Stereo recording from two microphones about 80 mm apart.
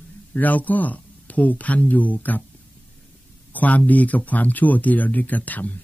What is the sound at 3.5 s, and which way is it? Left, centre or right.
Speech, centre.